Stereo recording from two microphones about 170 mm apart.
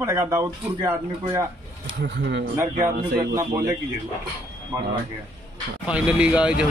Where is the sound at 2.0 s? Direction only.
90° right.